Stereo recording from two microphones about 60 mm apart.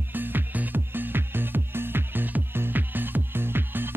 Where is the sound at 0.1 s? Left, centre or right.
Right.